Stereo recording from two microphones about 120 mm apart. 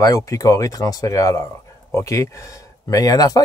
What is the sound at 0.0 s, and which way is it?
Speech, 30° left (ahead or behind).